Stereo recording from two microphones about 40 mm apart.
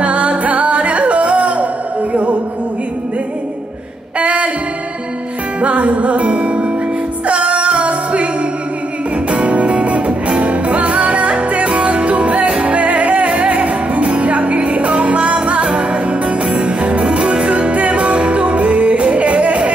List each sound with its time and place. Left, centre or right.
0.0 s music: right
4.2 s music: right
5.6 s music: right
9.3 s music: right